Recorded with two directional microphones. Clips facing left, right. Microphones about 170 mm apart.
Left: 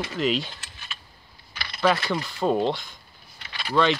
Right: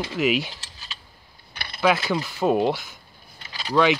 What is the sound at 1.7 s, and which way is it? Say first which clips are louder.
Speech: right 1 dB; 5° right (ahead or behind).